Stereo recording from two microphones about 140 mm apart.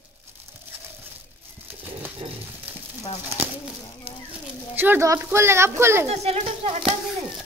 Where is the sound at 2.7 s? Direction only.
10° right (ahead or behind).